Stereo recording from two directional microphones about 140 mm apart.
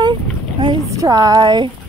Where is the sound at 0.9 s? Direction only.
25° right (ahead or behind).